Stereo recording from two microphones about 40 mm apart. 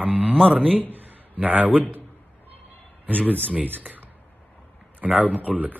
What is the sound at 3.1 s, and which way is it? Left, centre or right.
A man's voice, right.